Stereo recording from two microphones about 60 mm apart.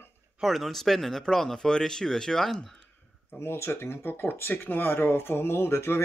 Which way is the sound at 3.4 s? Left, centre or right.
Left.